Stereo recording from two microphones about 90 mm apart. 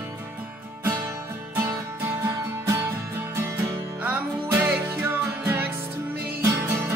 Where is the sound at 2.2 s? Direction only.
30° right (ahead or behind).